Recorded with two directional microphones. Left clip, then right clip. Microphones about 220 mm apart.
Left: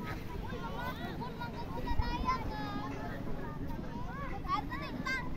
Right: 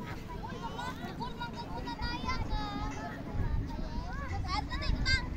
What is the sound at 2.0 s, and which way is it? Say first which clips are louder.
Vehicle: left 4 dB; 30° right (ahead or behind).